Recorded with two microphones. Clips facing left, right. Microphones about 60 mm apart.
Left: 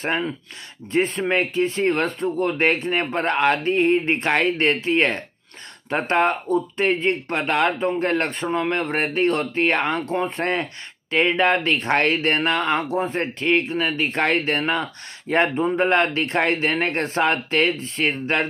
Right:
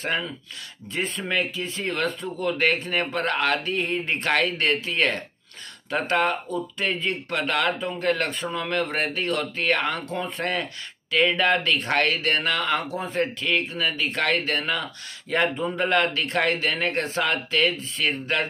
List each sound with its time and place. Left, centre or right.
0.0 s speech: left